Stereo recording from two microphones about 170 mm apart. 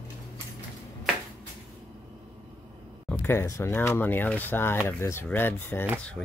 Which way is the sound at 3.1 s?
15° left (ahead or behind).